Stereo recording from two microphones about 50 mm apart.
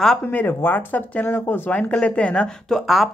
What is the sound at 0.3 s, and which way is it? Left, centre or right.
Speech, left.